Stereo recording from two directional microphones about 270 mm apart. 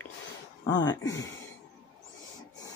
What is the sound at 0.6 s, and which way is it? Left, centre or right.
Speech, left.